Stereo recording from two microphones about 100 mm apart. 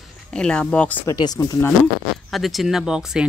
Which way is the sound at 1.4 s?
35° left (ahead or behind).